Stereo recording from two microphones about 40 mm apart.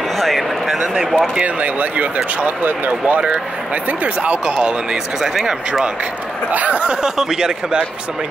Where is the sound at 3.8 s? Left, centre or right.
Right.